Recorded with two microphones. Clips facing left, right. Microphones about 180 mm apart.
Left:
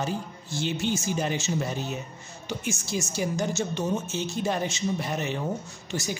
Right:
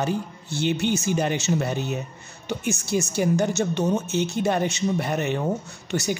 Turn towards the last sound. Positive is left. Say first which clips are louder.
# right 6 dB
turn(degrees=-65)  # may be behind; listen again after turning